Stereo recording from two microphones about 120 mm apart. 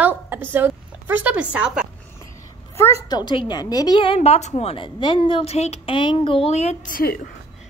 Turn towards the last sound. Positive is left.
turn(degrees=65)  # may be behind; listen again after turning